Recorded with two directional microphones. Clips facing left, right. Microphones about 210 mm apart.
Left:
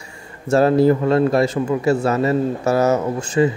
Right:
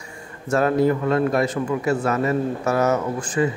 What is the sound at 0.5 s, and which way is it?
A man's voice, 30° left (ahead or behind).